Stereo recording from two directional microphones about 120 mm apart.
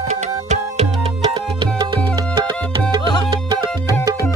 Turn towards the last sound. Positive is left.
turn(degrees=-35)  # may be behind; listen again after turning